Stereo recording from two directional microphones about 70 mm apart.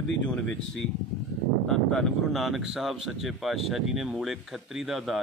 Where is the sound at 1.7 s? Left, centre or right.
Centre.